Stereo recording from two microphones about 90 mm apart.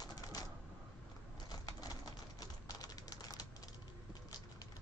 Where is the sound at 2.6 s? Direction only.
45° left (ahead or behind).